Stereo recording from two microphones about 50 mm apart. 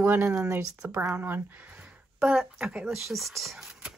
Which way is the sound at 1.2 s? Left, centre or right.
Right.